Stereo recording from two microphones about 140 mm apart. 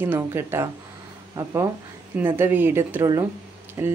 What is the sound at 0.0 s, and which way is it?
Speech, 15° right (ahead or behind).